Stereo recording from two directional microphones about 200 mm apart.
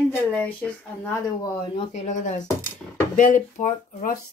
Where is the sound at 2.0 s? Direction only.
35° left (ahead or behind).